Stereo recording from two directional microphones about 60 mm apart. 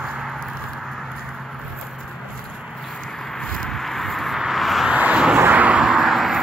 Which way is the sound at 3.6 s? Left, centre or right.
Centre.